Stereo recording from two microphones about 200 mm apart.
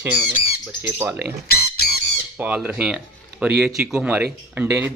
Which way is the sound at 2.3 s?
10° right (ahead or behind).